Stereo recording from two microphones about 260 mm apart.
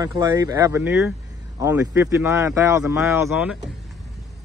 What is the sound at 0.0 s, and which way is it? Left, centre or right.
Speech, centre.